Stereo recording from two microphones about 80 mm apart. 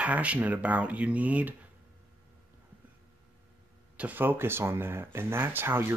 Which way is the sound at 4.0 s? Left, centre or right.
Right.